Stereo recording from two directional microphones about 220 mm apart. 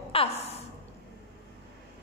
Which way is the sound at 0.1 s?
25° left (ahead or behind).